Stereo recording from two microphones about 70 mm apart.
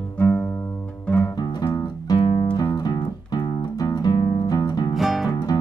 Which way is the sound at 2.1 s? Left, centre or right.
Left.